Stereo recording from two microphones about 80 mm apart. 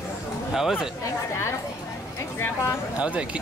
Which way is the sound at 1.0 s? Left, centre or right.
Left.